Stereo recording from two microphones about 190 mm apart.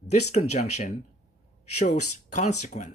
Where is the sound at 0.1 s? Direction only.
35° left (ahead or behind).